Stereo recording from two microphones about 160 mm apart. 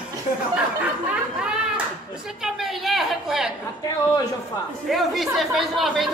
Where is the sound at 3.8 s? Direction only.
20° left (ahead or behind).